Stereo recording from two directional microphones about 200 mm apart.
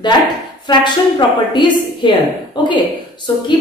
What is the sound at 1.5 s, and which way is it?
A woman's voice, 20° left (ahead or behind).